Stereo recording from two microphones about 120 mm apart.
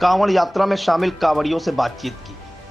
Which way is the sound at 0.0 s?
Centre (ahead or behind).